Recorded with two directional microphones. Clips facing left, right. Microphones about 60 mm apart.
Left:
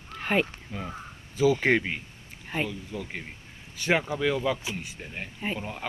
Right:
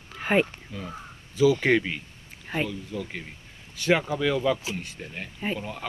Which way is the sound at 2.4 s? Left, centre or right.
Centre.